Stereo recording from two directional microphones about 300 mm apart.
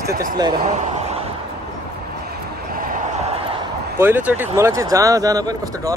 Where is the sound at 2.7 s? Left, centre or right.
Right.